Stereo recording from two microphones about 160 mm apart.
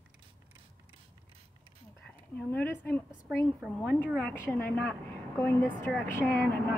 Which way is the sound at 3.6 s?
Centre (ahead or behind).